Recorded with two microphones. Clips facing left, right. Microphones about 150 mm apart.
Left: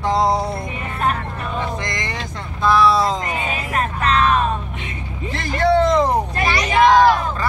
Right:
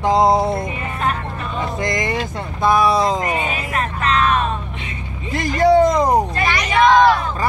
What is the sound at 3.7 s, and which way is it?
Music, 35° left (ahead or behind).